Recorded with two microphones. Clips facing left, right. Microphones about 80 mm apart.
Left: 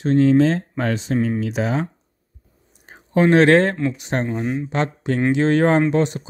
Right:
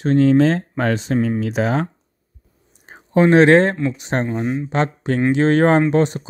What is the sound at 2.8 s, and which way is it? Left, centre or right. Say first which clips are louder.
Speech: right 2 dB; right.